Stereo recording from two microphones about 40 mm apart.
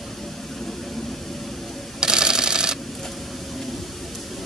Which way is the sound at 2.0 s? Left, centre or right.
Centre.